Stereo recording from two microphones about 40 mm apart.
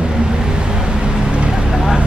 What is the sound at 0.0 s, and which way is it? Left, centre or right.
Vehicle, right.